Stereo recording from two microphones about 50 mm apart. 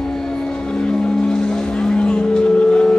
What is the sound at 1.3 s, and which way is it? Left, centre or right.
Vehicle, centre.